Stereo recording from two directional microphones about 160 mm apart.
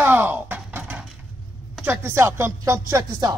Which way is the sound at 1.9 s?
15° right (ahead or behind).